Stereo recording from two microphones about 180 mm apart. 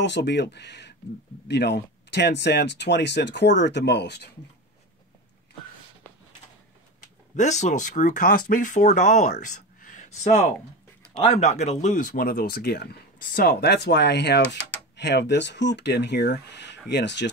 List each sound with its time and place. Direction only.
0.0 s speech: 75° left (ahead or behind)
7.3 s speech: 40° left (ahead or behind); by 17.3 s 75° left (ahead or behind)